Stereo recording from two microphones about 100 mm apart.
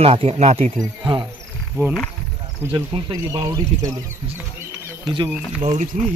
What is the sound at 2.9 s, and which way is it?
Speech, 65° right (ahead or behind).